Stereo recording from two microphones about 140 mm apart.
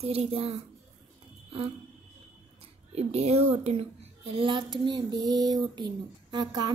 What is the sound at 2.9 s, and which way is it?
Speech, 50° right (ahead or behind).